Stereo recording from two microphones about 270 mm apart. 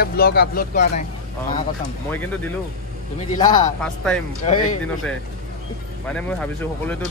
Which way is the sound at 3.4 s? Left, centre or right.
Centre.